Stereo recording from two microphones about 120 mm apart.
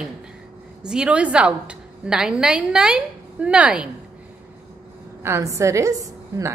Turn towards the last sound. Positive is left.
turn(degrees=-25)  # may be behind; listen again after turning